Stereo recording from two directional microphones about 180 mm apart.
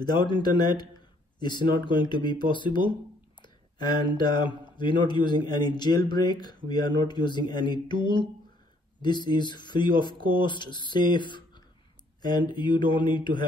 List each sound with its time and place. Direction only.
0.0 s speech: 25° left (ahead or behind)